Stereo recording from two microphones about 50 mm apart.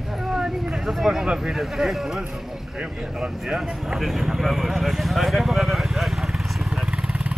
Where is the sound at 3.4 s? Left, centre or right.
Centre.